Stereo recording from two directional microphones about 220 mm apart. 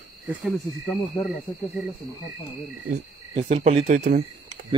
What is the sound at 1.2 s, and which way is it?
Speech, 15° left (ahead or behind).